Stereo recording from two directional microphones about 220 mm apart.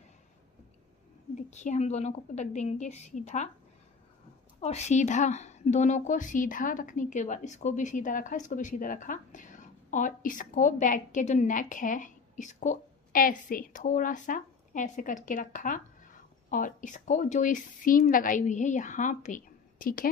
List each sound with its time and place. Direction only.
1.5 s a woman's voice: 30° left (ahead or behind)
4.6 s a woman's voice: 30° left (ahead or behind)